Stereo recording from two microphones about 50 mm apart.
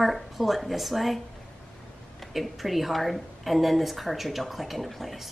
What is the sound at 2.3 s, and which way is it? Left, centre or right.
A woman's voice, centre.